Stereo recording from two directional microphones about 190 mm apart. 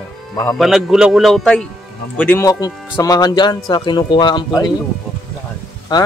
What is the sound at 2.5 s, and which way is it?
Speech, 20° left (ahead or behind).